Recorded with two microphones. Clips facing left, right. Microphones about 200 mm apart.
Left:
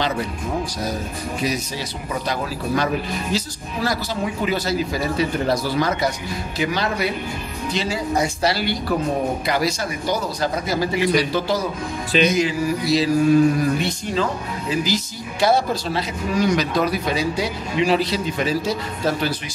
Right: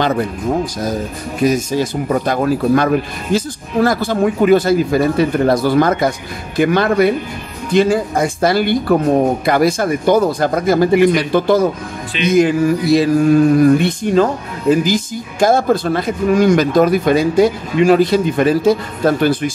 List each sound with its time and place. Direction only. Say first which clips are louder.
1.4 s speech: right 12 dB; 50° right (ahead or behind)